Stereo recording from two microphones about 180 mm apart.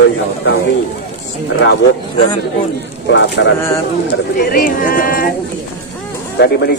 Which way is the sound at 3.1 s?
85° left.